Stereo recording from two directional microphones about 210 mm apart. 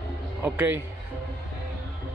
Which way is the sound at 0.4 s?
10° right (ahead or behind).